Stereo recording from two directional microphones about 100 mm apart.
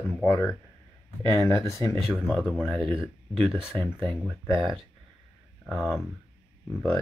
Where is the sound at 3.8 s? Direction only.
20° left (ahead or behind).